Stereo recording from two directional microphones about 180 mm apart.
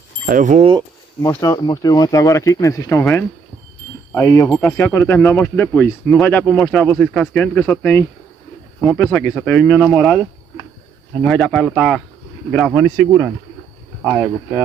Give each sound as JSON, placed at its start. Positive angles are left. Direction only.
{"t": 0.3, "sound": "speech", "side_deg": -45}
{"t": 1.2, "sound": "speech", "side_deg": 20}
{"t": 11.2, "sound": "speech", "side_deg": 0}